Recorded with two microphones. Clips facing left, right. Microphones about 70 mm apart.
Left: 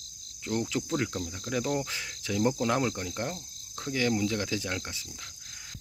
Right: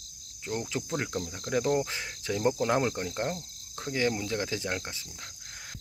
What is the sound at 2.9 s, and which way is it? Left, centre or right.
Speech, right.